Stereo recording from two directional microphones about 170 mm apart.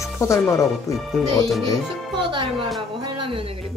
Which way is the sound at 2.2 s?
30° right (ahead or behind).